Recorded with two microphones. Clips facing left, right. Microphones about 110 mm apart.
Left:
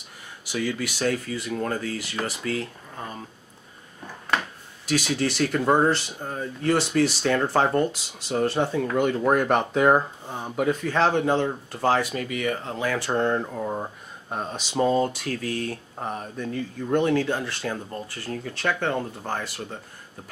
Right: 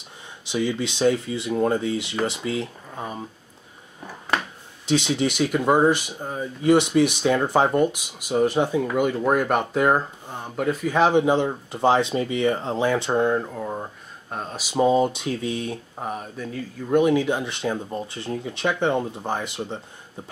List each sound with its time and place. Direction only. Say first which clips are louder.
0.5 s speech: right 3 dB; 20° right (ahead or behind)
4.0 s a sound: right 1 dB; 10° right (ahead or behind)
4.8 s speech: right 3 dB; 25° right (ahead or behind)
13.1 s speech: right 2 dB; 5° right (ahead or behind)
14.6 s speech: right 3 dB; 10° right (ahead or behind)
16.0 s speech: left 1 dB; 5° right (ahead or behind); by 19.8 s 20° right (ahead or behind)